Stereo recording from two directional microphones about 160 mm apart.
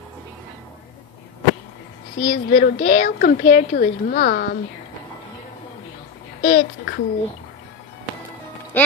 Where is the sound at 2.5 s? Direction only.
65° left (ahead or behind).